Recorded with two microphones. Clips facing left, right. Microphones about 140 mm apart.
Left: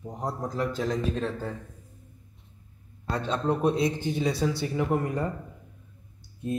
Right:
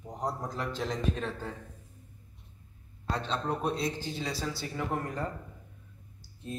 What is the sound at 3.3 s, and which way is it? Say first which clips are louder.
A man's voice: left 8 dB; 15° left (ahead or behind).